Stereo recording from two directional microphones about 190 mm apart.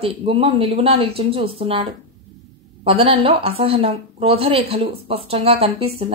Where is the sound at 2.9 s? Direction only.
30° right (ahead or behind).